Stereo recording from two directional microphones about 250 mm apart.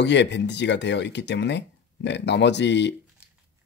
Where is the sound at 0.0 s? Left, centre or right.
Left.